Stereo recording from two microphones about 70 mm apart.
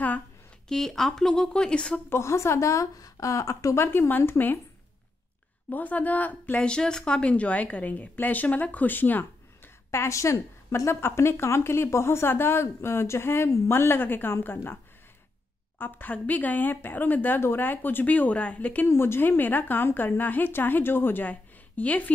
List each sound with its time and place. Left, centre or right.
0.7 s speech: centre
2.0 s speech: left
5.7 s speech: left
9.8 s speech: left
15.8 s speech: left
18.9 s speech: left